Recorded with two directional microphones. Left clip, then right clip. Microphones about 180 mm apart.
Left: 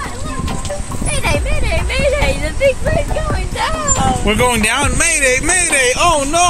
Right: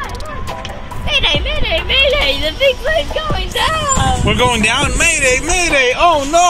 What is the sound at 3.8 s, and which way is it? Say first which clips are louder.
Speech: right 1 dB; centre (ahead or behind).